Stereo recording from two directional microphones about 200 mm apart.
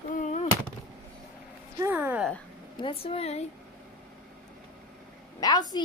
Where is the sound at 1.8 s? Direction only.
10° right (ahead or behind).